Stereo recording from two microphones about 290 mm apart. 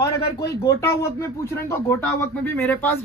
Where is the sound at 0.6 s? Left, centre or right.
Centre.